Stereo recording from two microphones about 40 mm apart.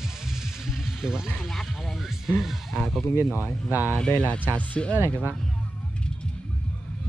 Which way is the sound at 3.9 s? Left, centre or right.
Left.